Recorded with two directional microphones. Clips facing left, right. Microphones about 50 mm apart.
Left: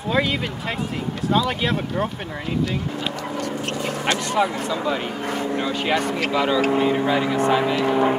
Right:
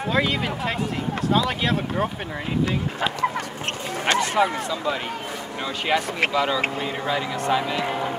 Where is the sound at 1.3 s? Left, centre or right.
Centre.